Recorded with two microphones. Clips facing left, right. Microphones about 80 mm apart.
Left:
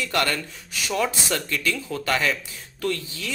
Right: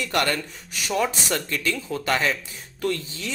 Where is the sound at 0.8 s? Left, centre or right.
Centre.